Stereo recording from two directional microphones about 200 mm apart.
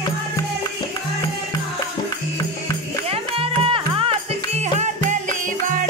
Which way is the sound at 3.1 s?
30° right (ahead or behind).